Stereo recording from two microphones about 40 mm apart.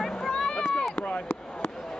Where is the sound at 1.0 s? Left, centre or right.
Left.